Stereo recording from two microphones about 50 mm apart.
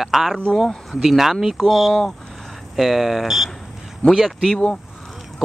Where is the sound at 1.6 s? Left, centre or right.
Centre.